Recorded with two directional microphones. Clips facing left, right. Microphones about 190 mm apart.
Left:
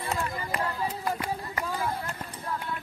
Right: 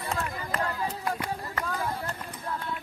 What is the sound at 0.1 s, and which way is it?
Run, 5° left (ahead or behind).